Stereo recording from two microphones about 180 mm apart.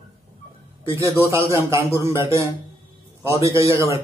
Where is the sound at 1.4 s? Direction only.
15° right (ahead or behind).